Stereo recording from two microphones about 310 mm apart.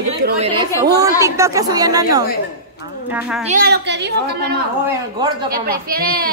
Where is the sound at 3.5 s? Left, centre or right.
Right.